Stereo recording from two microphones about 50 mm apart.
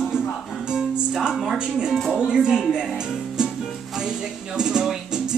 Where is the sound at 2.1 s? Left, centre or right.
Centre.